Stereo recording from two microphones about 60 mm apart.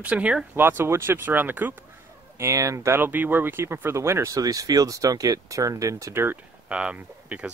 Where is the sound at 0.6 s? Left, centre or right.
Right.